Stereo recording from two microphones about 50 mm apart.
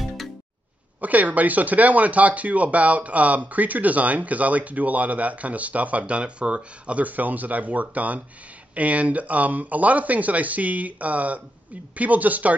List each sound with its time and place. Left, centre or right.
1.0 s speech: right